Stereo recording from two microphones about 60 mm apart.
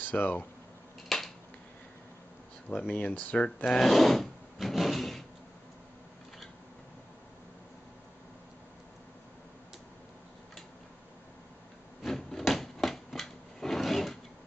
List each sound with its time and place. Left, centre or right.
0.0 s speech: left
1.0 s finger snapping: centre
2.9 s speech: left
3.6 s wood: centre
12.0 s a sound: centre